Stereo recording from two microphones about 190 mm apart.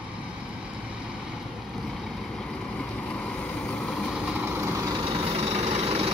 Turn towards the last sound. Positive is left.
turn(degrees=-30)  # may be behind; listen again after turning